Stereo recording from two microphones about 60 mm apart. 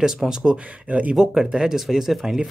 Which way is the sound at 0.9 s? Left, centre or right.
Right.